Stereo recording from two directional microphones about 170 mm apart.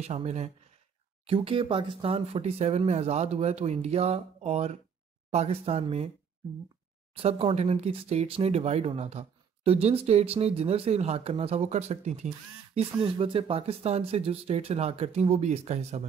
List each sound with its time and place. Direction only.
0.0 s speech: 40° right (ahead or behind)
7.2 s speech: 35° right (ahead or behind)